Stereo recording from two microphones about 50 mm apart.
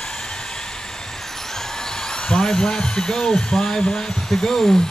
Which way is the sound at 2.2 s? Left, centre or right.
Centre.